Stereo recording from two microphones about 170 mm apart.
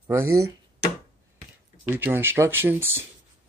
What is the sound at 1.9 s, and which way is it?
Speech, 15° right (ahead or behind).